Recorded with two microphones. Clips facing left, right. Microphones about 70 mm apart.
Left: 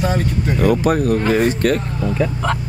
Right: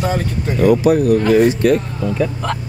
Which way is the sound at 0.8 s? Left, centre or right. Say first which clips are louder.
Right 3 dB; left.